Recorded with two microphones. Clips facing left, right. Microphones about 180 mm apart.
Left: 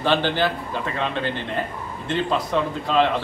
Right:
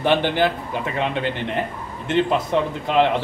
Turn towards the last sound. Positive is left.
turn(degrees=-20)  # may be behind; listen again after turning